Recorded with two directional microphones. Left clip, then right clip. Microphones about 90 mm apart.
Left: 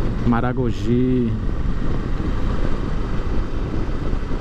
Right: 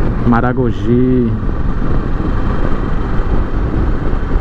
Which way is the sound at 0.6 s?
25° left (ahead or behind).